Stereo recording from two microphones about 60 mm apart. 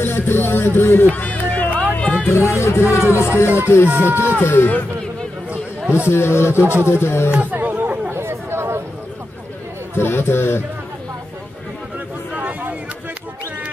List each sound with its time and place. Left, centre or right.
0.0 s music: left
1.1 s music: left
2.3 s speech: left
3.4 s music: right
3.8 s speech: right
4.4 s music: left
5.5 s a sound: right
6.0 s speech: left
6.6 s speech: right
6.9 s speech: left
7.5 s chatter: right
9.9 s music: left
12.4 s a sound: right